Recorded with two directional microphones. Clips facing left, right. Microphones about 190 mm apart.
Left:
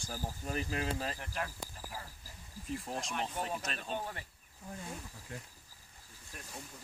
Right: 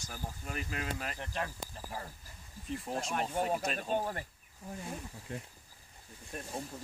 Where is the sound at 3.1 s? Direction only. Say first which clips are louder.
Right 6 dB; 50° right (ahead or behind).